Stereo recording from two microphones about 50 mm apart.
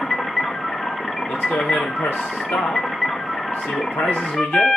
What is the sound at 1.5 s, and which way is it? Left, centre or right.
Speech, centre.